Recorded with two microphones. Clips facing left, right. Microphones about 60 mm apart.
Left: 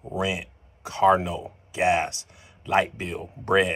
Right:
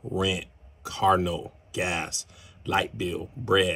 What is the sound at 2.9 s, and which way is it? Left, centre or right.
Speech, left.